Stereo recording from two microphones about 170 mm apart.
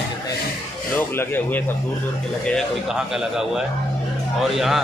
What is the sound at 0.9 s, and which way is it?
Speech, 15° left (ahead or behind).